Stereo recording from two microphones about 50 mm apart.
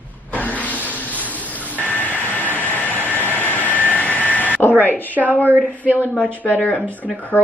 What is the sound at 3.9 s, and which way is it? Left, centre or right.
Vehicle, left.